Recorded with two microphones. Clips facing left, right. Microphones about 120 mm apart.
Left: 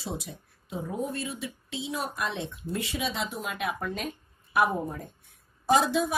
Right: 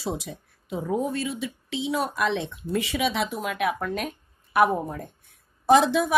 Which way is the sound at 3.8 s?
55° right (ahead or behind).